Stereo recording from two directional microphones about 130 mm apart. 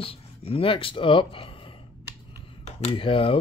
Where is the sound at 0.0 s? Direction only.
45° left (ahead or behind).